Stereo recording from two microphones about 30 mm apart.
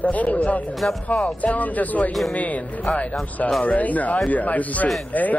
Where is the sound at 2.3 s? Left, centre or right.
Left.